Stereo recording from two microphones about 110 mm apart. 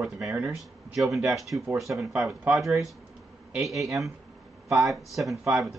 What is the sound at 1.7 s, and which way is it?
Speech, 30° right (ahead or behind).